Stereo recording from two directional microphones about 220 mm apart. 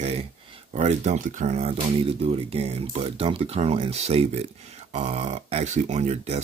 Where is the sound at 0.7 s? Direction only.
35° right (ahead or behind).